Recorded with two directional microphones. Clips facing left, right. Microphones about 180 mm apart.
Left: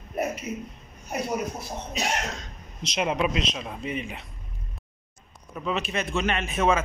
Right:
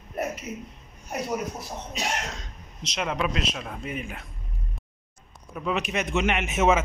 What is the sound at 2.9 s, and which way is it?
Speech, 15° left (ahead or behind).